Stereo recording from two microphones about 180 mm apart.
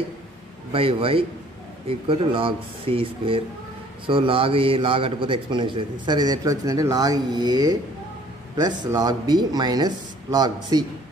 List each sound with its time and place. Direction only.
0.7 s a man's voice: 30° right (ahead or behind)